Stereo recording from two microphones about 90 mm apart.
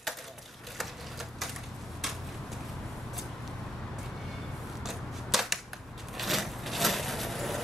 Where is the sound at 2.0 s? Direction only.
Centre (ahead or behind).